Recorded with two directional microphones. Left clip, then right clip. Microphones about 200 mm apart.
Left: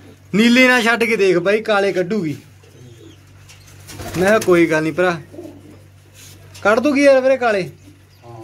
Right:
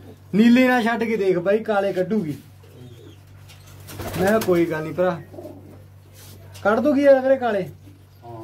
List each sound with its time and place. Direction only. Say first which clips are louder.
0.3 s a man's voice: left 5 dB; 5° left (ahead or behind); by 2.2 s 20° left (ahead or behind)
4.2 s a man's voice: left 6 dB; 20° left (ahead or behind)
6.6 s speech: left 4 dB; 20° left (ahead or behind)